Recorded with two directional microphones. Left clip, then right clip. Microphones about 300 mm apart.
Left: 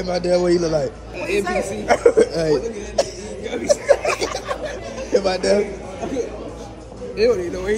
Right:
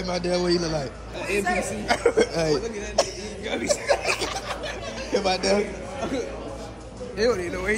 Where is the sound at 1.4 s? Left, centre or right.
Centre.